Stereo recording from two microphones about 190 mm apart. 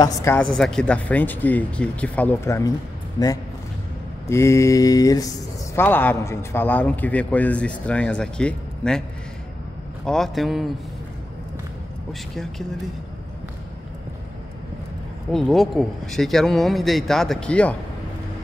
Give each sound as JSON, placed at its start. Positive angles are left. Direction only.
{"t": 0.0, "sound": "a man's voice", "side_deg": 15}
{"t": 10.0, "sound": "speech", "side_deg": 0}
{"t": 12.1, "sound": "speech", "side_deg": 0}
{"t": 15.3, "sound": "speech", "side_deg": 0}